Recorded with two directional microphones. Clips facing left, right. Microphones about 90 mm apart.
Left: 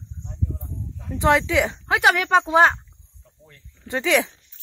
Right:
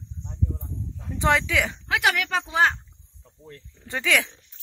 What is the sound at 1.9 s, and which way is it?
Speech, 30° left (ahead or behind).